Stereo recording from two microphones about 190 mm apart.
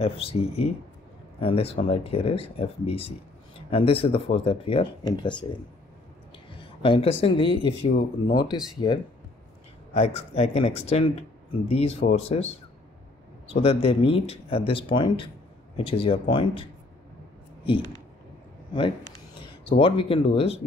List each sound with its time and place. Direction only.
0.0 s speech: 30° left (ahead or behind)
6.6 s speech: 25° left (ahead or behind)
7.8 s speech: 55° left (ahead or behind)
8.8 s speech: 25° left (ahead or behind)
13.5 s speech: 30° left (ahead or behind)
19.8 s speech: 30° left (ahead or behind)